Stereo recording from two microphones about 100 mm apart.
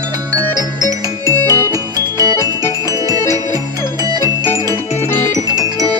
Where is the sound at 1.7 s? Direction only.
35° right (ahead or behind).